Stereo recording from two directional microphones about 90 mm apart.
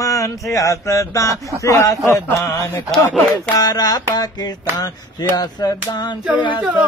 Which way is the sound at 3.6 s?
45° left (ahead or behind).